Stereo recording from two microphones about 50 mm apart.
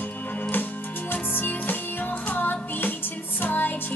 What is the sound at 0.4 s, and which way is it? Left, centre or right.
Music, left.